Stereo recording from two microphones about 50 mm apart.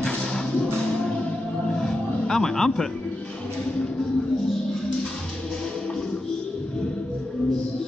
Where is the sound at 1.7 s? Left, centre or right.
Centre.